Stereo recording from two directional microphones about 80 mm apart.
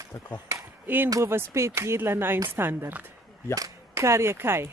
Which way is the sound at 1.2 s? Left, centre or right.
Right.